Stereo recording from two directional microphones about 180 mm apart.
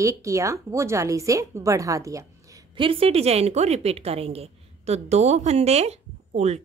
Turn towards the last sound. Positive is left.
turn(degrees=-40)  # may be behind; listen again after turning